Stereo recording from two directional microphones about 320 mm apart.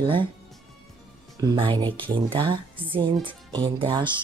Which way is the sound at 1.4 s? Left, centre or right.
Centre.